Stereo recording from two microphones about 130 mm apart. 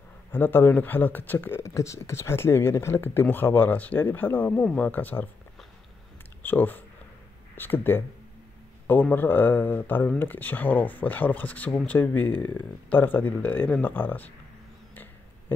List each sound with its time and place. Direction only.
0.3 s speech: 15° left (ahead or behind)
6.4 s speech: 15° left (ahead or behind)